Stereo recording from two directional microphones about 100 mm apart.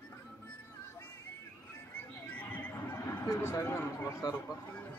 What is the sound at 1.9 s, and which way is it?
Neigh, 20° left (ahead or behind).